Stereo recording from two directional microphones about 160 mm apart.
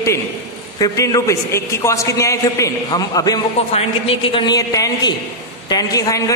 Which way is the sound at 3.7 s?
40° left (ahead or behind).